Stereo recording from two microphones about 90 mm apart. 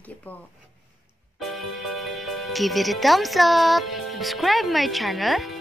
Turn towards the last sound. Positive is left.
turn(degrees=0)  # may be behind; listen again after turning